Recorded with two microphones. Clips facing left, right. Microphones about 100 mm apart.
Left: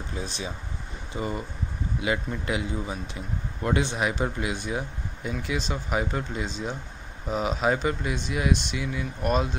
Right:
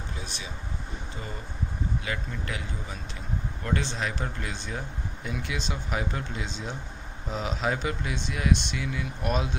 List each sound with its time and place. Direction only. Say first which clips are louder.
1.1 s a man's voice: left 12 dB; 20° left (ahead or behind); by 9.6 s centre (ahead or behind)